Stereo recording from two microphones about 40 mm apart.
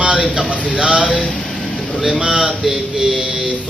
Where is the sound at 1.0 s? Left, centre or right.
Left.